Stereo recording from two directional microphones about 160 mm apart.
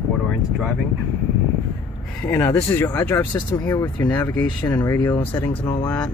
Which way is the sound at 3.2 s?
30° left (ahead or behind).